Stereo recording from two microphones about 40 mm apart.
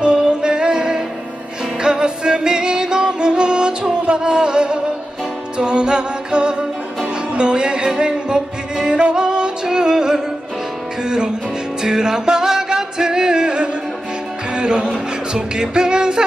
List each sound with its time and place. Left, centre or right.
0.0 s music: right
11.8 s music: centre